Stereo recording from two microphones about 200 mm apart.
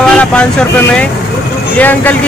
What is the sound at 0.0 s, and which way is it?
Speech, 5° left (ahead or behind).